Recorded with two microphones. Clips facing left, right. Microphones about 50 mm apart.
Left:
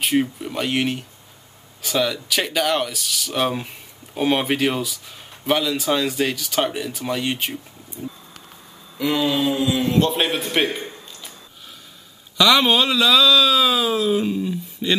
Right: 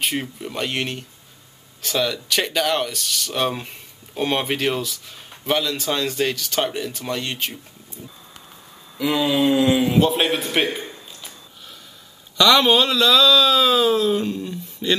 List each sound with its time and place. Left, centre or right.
0.0 s speech: centre
8.9 s a man's voice: centre
12.4 s speech: centre